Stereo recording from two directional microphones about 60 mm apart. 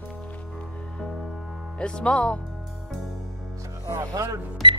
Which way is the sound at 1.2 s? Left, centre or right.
Centre.